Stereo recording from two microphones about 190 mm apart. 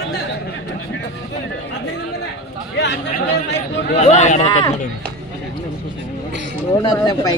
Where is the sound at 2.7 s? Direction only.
65° left (ahead or behind).